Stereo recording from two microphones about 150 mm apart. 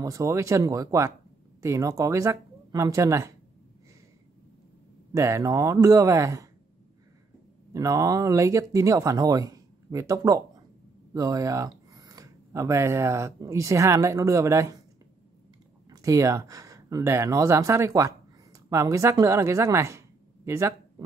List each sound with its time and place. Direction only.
0.0 s speech: 20° right (ahead or behind)
5.1 s speech: 20° right (ahead or behind)
7.7 s speech: 20° right (ahead or behind)
15.9 s speech: 20° right (ahead or behind)